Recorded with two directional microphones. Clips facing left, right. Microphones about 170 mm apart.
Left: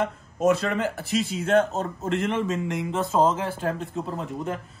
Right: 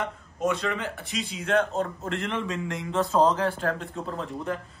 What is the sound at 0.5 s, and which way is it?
Speech, 40° left (ahead or behind).